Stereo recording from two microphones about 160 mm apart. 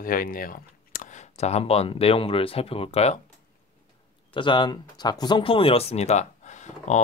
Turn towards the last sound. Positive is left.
turn(degrees=45)  # may be behind; listen again after turning